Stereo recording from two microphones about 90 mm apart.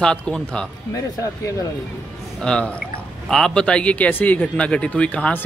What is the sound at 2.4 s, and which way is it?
Speech, 10° left (ahead or behind).